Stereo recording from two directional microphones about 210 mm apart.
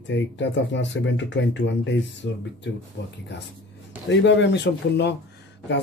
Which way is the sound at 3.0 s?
50° left (ahead or behind).